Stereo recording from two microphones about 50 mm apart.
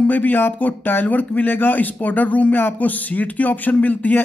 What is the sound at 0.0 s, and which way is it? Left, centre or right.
Speech, left.